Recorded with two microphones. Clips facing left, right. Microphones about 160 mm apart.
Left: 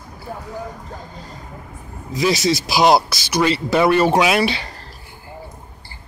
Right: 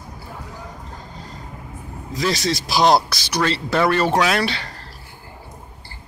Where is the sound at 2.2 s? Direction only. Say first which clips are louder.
Left 4 dB; 5° left (ahead or behind).